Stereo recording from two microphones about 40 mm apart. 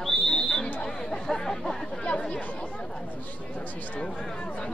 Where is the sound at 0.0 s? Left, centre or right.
Centre.